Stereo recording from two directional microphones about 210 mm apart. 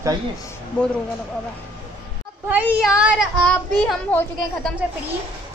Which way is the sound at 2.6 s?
5° right (ahead or behind).